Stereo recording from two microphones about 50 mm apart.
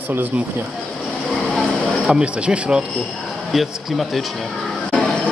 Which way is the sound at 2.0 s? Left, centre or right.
Centre.